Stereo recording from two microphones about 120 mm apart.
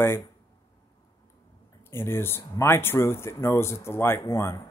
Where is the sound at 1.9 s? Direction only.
20° left (ahead or behind).